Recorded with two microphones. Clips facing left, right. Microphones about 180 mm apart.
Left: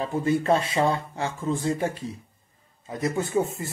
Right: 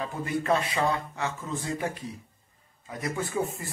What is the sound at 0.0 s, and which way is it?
Speech, 30° left (ahead or behind).